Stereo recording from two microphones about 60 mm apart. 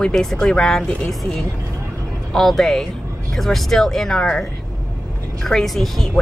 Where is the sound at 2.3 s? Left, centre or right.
Centre.